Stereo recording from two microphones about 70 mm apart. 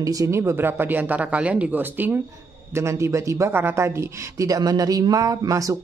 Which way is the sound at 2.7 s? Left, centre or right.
Right.